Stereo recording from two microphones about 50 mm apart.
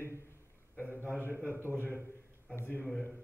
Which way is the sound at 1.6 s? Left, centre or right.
Right.